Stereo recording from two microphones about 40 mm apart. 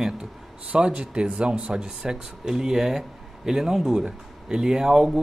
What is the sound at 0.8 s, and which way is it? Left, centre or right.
Speech, right.